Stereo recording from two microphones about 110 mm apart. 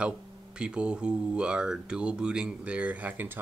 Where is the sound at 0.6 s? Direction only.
10° right (ahead or behind).